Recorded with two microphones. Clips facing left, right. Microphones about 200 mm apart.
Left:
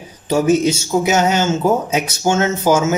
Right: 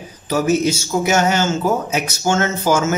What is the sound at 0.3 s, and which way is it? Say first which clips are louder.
Speech: left 3 dB; 25° left (ahead or behind).